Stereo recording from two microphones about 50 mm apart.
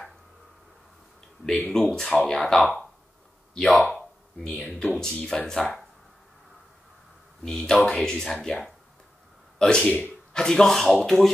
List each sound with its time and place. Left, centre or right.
1.7 s speech: centre
3.9 s a sound: centre
4.9 s speech: centre
7.4 s speech: centre